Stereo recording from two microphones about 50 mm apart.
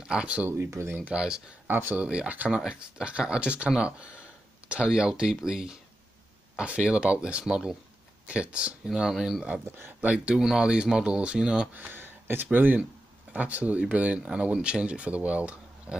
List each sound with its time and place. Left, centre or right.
0.0 s speech: centre
0.5 s speech: right
1.1 s speech: centre
1.7 s speech: right
2.0 s speech: right
8.8 s speech: centre
10.0 s speech: right
11.7 s speech: right
12.0 s a sound: right
12.4 s speech: right